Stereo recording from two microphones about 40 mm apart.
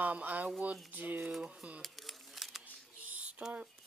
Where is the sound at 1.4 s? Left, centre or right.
Right.